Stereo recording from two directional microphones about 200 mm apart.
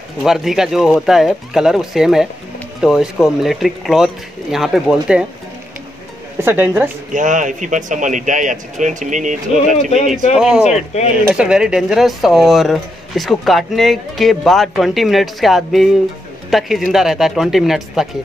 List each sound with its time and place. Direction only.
0.2 s speech: centre (ahead or behind)
6.4 s speech: 10° right (ahead or behind)
7.2 s speech: 40° right (ahead or behind)
10.3 s speech: 5° right (ahead or behind)
10.6 s speech: 35° left (ahead or behind)
11.2 s speech: 5° right (ahead or behind)